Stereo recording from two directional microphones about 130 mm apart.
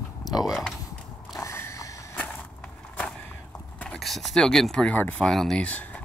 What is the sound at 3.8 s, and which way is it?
Speech, centre (ahead or behind).